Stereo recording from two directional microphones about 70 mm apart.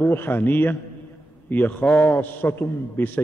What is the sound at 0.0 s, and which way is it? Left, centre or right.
A man's voice, left.